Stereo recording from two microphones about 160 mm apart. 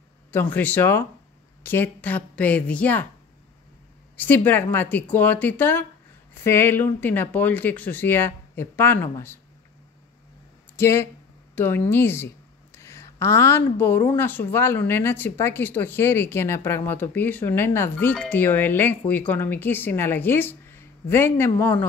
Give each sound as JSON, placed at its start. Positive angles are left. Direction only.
{"t": 0.3, "sound": "a woman's voice", "side_deg": 10}
{"t": 4.2, "sound": "a woman's voice", "side_deg": 10}
{"t": 10.8, "sound": "a woman's voice", "side_deg": 15}